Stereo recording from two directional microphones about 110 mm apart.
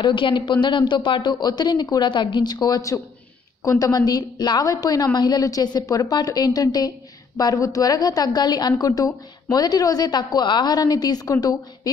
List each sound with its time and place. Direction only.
0.0 s a man's voice: 45° left (ahead or behind)